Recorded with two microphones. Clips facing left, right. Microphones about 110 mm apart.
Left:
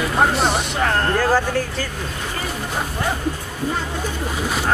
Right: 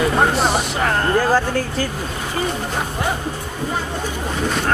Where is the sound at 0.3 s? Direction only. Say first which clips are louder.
Right 1 dB; centre (ahead or behind).